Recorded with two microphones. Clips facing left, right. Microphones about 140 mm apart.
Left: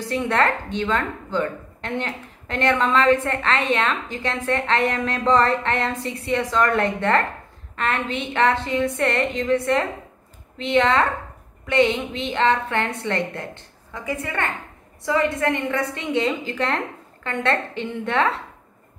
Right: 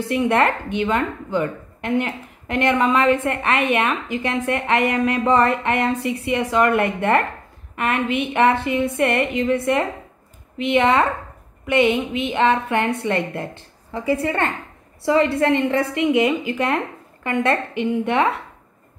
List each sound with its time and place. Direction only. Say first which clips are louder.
0.1 s a woman's voice: right 3 dB; 15° right (ahead or behind)